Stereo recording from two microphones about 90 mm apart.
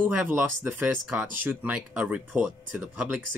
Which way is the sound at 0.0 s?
20° right (ahead or behind).